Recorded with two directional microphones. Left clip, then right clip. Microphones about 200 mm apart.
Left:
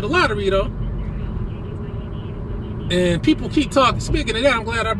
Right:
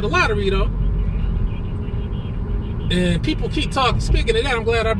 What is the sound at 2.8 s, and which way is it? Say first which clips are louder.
Speech: left 4 dB; 45° left (ahead or behind).